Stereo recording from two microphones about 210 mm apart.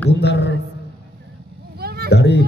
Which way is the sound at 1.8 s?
50° right (ahead or behind).